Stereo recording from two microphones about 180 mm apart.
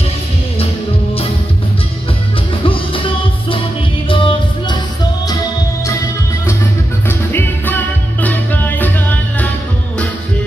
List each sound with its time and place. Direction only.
2.6 s music: 30° left (ahead or behind)
7.1 s music: 10° left (ahead or behind)